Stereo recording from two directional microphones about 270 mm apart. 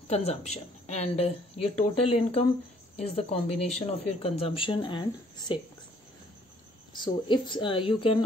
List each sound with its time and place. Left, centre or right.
0.1 s speech: left
7.0 s speech: centre